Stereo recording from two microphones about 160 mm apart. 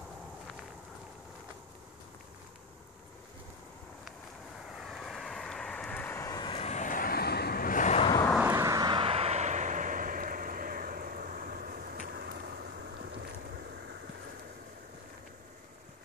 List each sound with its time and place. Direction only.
4.6 s vehicle: centre (ahead or behind); by 6.4 s 15° left (ahead or behind)
6.4 s vehicle: 35° left (ahead or behind)
8.4 s vehicle: 15° right (ahead or behind); by 12.4 s 80° right